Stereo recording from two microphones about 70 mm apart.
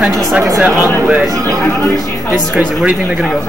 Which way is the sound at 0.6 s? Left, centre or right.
Right.